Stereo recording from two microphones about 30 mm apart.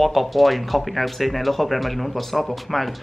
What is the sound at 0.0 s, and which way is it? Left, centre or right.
Speech, centre.